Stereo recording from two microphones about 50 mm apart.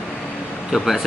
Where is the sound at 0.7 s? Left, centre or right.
Centre.